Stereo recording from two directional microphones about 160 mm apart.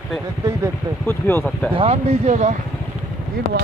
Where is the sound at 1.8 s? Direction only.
40° right (ahead or behind).